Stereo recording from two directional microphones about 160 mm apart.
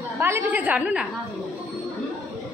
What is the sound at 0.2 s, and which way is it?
Speech, 15° right (ahead or behind).